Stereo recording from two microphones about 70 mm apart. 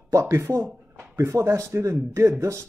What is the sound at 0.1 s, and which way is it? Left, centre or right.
Speech, right.